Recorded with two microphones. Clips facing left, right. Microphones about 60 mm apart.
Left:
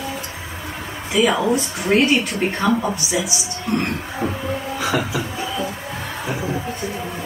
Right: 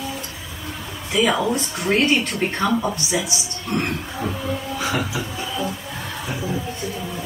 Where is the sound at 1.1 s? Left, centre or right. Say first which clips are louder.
Left 2 dB; centre.